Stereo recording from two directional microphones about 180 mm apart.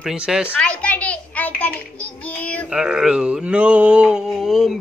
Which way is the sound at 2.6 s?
5° right (ahead or behind).